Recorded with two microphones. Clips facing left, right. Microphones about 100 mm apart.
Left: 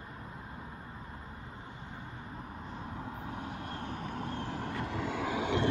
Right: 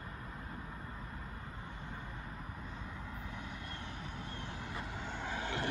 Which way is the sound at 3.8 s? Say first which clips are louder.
Left 7 dB; 50° left (ahead or behind).